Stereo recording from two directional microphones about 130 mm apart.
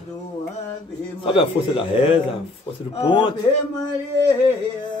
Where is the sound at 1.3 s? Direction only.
45° left (ahead or behind).